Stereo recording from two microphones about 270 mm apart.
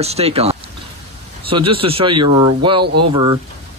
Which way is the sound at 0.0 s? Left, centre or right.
Right.